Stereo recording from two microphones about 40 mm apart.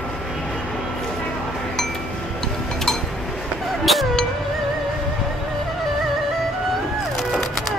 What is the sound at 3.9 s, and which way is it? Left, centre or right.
Music, centre.